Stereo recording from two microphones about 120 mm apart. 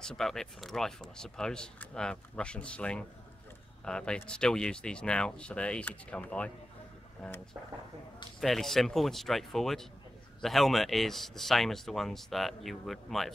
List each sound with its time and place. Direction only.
0.0 s speech: 5° left (ahead or behind)
8.4 s speech: centre (ahead or behind)